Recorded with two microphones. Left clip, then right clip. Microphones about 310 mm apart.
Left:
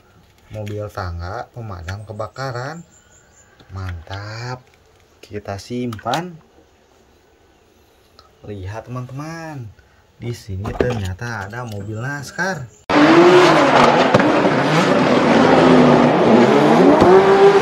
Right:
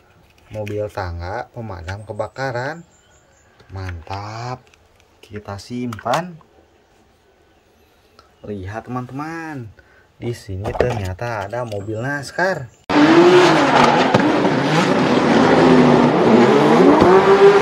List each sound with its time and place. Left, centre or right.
0.5 s speech: right
0.9 s speech: centre
5.2 s speech: centre
5.9 s speech: centre
8.5 s speech: centre
12.8 s vehicle: centre